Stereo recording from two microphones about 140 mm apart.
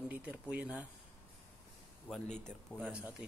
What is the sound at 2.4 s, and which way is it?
Speech, 5° left (ahead or behind).